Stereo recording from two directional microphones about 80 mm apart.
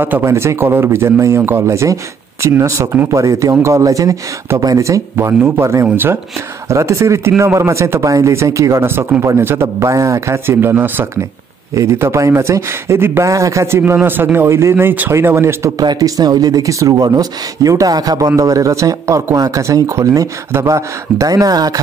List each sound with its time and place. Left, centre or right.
0.2 s speech: right
6.7 s speech: right
11.7 s speech: right
15.8 s speech: right